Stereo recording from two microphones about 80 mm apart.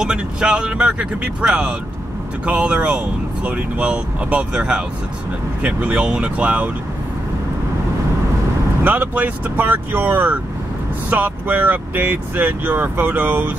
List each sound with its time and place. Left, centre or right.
0.0 s speech: centre
8.8 s speech: right